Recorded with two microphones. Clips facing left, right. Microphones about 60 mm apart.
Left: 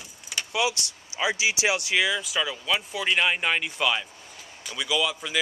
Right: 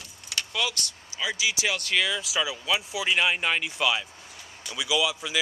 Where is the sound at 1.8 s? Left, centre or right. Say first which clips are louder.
Left 2 dB; centre.